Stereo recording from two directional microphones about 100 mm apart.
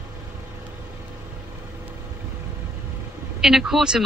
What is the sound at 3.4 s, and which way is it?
Speech, 5° right (ahead or behind).